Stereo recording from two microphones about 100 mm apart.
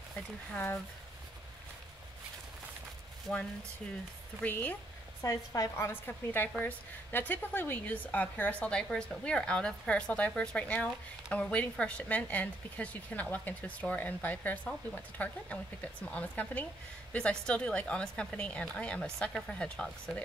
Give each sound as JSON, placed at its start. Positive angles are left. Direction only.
{"t": 0.5, "sound": "speech", "side_deg": 15}
{"t": 4.4, "sound": "speech", "side_deg": 15}
{"t": 5.2, "sound": "a woman's voice", "side_deg": 35}